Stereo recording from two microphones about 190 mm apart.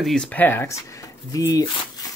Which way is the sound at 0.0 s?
5° left (ahead or behind).